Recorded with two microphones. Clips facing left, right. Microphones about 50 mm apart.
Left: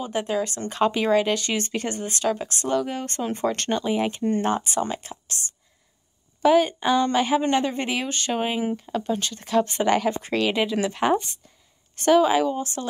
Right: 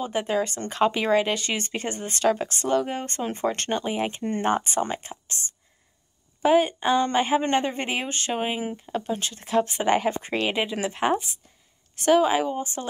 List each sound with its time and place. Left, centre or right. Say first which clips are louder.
0.8 s speech: left 1 dB; right
2.0 s speech: right 2 dB; right
3.2 s speech: left 2 dB; centre
4.5 s speech: even; right
6.4 s a woman's voice: left 1 dB; centre
8.3 s speech: left 4 dB; centre
9.9 s a woman's voice: left 1 dB; right
10.5 s a woman's voice: left 3 dB; centre
12.4 s a woman's voice: left 2 dB; right